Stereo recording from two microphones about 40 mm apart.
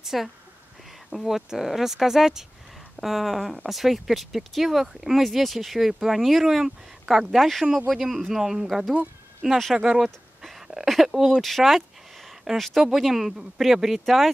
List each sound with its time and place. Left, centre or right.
0.0 s speech: centre
9.4 s speech: right
10.0 s a sound: centre
10.9 s speech: centre
11.4 s a sound: centre
12.5 s speech: centre